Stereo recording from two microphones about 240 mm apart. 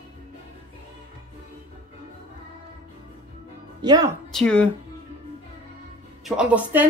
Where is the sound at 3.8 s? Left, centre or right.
Centre.